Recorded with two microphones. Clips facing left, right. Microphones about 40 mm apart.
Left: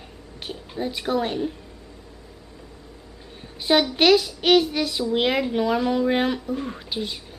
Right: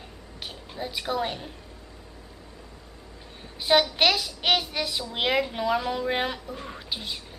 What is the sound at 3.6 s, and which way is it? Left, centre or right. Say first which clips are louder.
Speech: left 3 dB; centre.